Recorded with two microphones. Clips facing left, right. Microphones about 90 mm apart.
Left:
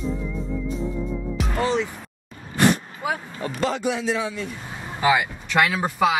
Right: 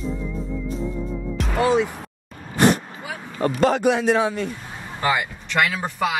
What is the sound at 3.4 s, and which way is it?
A man's voice, 50° right (ahead or behind).